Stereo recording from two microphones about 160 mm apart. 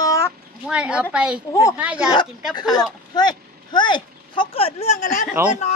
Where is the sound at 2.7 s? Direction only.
25° left (ahead or behind); by 5.2 s 55° left (ahead or behind).